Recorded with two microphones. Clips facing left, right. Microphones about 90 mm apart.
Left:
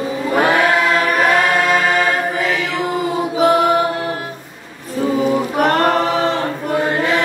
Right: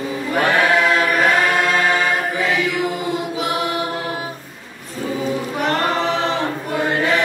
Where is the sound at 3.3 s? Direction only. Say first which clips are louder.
Left 9 dB; 45° left (ahead or behind).